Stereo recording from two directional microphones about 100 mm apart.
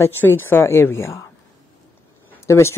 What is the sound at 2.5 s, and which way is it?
Speech, 25° left (ahead or behind).